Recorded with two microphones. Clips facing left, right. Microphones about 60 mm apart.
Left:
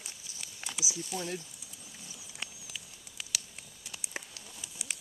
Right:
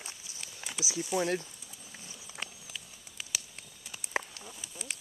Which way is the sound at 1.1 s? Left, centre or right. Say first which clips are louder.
Right 8 dB; right.